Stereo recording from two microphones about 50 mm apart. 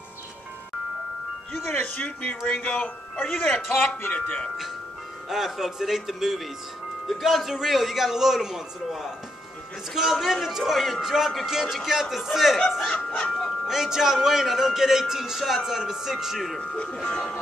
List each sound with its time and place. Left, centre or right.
2.0 s speech: left
3.3 s speech: centre
4.1 s speech: left
5.3 s speech: centre
12.9 s speech: left
13.7 s speech: centre
16.7 s speech: centre